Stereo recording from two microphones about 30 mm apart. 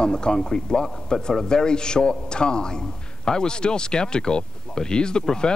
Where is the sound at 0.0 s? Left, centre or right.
Left.